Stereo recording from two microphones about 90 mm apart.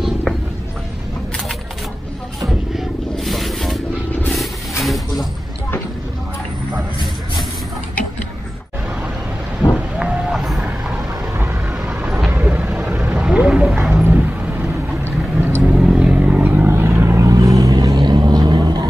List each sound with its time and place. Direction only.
2.4 s a sound: centre (ahead or behind)
9.9 s a sound: 10° right (ahead or behind)
11.8 s vehicle: 10° right (ahead or behind)
15.6 s vehicle: 10° right (ahead or behind); by 17.3 s 25° right (ahead or behind)
17.3 s vehicle: 35° right (ahead or behind)
17.7 s vehicle: 55° right (ahead or behind)